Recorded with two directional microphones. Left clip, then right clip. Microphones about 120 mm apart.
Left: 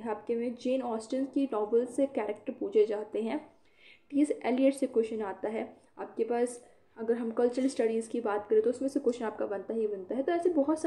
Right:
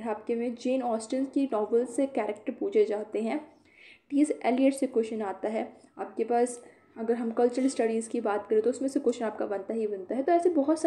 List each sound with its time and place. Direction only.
0.0 s speech: 30° right (ahead or behind)